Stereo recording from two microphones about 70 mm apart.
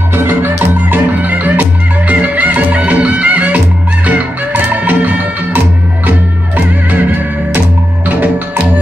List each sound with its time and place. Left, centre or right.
0.1 s music: right